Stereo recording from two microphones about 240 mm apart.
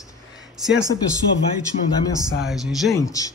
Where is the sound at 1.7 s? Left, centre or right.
Left.